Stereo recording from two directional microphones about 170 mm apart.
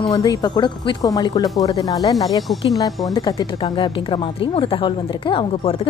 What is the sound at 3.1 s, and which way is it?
A woman's voice, 25° left (ahead or behind).